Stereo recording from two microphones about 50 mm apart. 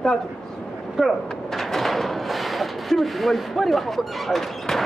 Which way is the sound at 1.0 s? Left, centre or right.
Centre.